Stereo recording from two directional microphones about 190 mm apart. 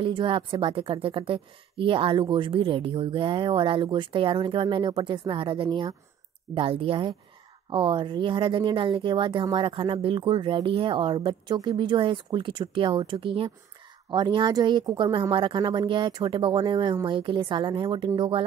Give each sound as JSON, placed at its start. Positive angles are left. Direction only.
{"t": 0.0, "sound": "a woman's voice", "side_deg": -25}